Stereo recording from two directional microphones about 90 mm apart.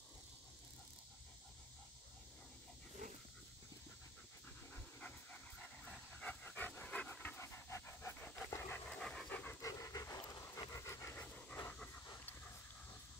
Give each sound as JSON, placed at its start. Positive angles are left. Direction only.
{"t": 4.7, "sound": "dog", "side_deg": 15}
{"t": 6.4, "sound": "pant", "side_deg": 20}
{"t": 8.9, "sound": "pant", "side_deg": 10}
{"t": 9.6, "sound": "pant", "side_deg": 40}